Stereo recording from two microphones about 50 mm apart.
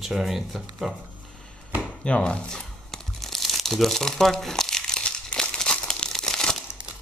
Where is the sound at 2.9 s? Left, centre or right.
Centre.